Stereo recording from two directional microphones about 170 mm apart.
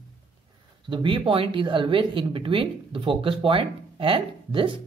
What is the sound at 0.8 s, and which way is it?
Speech, 30° right (ahead or behind).